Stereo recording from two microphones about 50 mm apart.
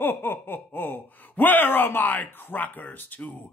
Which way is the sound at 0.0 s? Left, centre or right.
Left.